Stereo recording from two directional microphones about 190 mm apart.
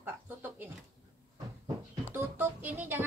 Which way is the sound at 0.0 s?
10° right (ahead or behind).